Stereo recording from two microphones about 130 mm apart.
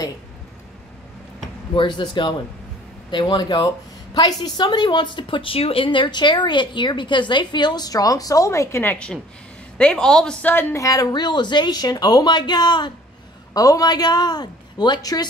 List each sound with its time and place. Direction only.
1.8 s speech: 40° left (ahead or behind); by 8.9 s 20° left (ahead or behind)
8.9 s speech: 10° left (ahead or behind); by 15.2 s 30° left (ahead or behind)